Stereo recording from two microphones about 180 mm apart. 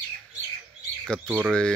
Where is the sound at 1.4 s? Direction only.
5° left (ahead or behind).